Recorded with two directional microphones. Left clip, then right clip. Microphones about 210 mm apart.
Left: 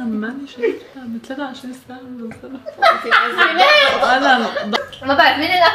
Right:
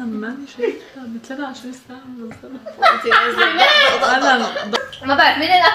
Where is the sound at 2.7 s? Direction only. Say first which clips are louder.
Even; centre (ahead or behind).